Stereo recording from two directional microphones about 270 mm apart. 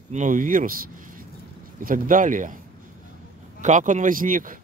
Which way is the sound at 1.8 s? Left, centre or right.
Right.